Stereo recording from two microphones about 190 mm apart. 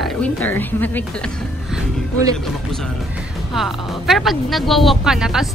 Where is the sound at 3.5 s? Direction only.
Centre (ahead or behind).